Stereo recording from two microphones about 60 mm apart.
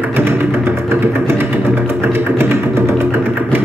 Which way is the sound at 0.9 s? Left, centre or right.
Right.